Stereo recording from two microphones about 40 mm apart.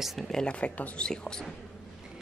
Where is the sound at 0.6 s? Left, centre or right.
Left.